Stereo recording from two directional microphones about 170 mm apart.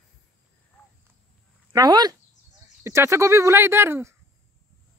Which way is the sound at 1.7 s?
25° right (ahead or behind).